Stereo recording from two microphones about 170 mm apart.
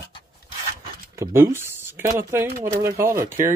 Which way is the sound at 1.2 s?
15° right (ahead or behind).